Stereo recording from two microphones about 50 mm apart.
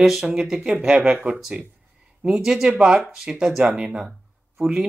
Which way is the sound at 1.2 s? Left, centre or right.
Right.